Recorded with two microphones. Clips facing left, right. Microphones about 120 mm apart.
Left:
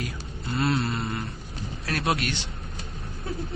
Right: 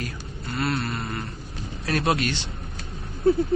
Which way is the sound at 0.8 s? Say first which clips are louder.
Left 1 dB; 10° left (ahead or behind).